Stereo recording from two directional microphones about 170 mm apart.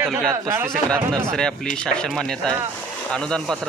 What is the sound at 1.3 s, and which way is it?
Speech, 5° left (ahead or behind).